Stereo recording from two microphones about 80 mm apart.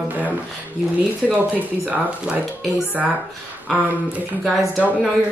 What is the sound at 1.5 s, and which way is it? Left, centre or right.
Speech, right.